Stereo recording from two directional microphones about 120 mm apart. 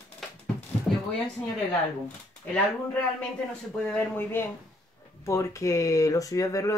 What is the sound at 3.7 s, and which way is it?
Speech, 10° left (ahead or behind).